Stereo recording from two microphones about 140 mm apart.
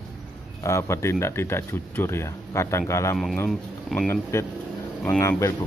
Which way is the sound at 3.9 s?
5° left (ahead or behind).